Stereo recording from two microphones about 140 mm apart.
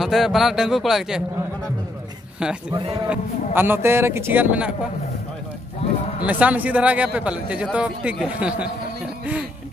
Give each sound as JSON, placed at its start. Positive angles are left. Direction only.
{"t": 0.0, "sound": "a man's voice", "side_deg": 0}
{"t": 2.4, "sound": "a man's voice", "side_deg": -5}
{"t": 6.2, "sound": "speech", "side_deg": -10}